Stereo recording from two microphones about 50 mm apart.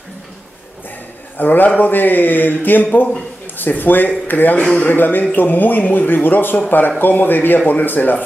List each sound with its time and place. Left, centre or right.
1.4 s speech: left
4.6 s speech: left
4.8 s speech: left